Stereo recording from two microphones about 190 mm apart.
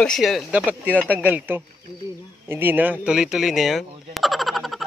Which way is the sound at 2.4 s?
10° right (ahead or behind).